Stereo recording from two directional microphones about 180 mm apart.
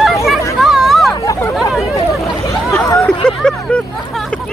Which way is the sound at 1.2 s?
15° left (ahead or behind).